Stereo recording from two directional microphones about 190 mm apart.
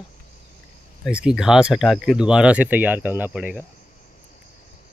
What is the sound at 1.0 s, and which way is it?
Speech, 5° right (ahead or behind).